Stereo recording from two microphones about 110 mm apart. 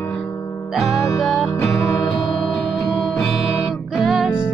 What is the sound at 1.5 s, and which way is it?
Music, 25° left (ahead or behind).